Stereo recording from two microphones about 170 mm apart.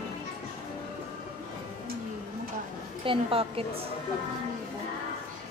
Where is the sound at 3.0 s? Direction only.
30° right (ahead or behind).